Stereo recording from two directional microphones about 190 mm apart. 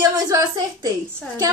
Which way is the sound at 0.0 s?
15° right (ahead or behind).